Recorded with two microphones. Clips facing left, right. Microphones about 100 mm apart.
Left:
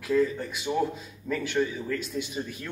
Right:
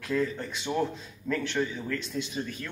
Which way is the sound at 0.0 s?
5° left (ahead or behind).